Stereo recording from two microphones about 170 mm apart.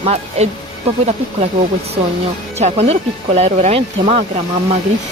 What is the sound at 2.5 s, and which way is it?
Speech, 40° right (ahead or behind).